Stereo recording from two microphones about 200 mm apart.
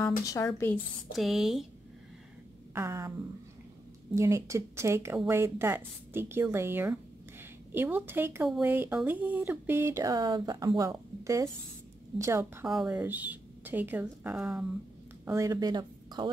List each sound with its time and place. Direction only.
0.2 s speech: 15° left (ahead or behind)
1.1 s speech: centre (ahead or behind)
2.7 s speech: 15° right (ahead or behind)
4.1 s speech: 15° right (ahead or behind)
12.6 s speech: 5° right (ahead or behind)
15.2 s speech: 15° right (ahead or behind)